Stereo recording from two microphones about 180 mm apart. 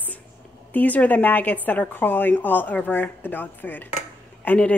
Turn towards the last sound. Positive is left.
turn(degrees=10)  # may be behind; listen again after turning